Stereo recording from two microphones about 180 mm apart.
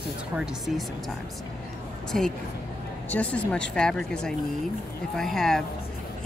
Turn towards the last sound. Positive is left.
turn(degrees=0)  # may be behind; listen again after turning